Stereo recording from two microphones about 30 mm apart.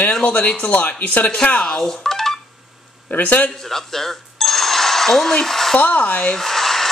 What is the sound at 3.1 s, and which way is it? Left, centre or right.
Speech, left.